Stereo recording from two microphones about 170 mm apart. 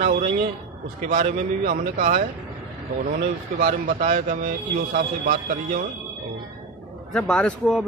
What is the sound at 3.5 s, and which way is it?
Speech, 55° right (ahead or behind).